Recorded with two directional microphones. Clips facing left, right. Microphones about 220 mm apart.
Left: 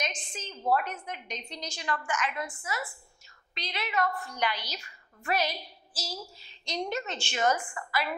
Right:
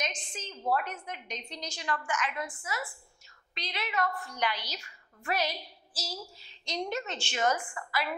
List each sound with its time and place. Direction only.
0.0 s a sound: 10° left (ahead or behind)
0.7 s a woman's voice: 15° left (ahead or behind)
4.1 s a woman's voice: 25° left (ahead or behind)
4.4 s a woman's voice: 10° left (ahead or behind)